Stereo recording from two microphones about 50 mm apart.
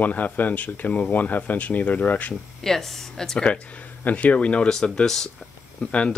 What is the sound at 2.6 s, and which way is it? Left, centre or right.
Speech, centre.